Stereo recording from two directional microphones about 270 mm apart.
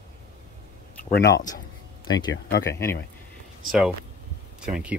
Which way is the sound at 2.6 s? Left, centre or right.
Centre.